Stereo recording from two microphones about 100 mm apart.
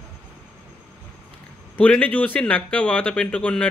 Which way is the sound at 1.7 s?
15° left (ahead or behind).